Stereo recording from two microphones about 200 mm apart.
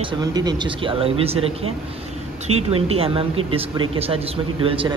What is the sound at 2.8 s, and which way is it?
Speech, 30° right (ahead or behind).